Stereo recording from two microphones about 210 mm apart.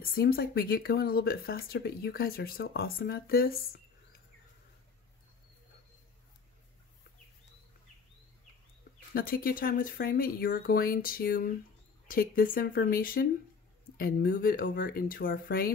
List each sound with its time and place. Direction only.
0.0 s speech: 45° left (ahead or behind)
9.1 s speech: 45° left (ahead or behind)